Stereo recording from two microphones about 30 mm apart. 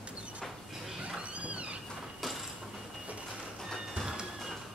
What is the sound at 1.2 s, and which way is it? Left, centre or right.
Cat, right.